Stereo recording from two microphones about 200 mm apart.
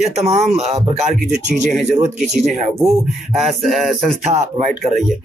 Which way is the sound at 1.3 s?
Centre (ahead or behind).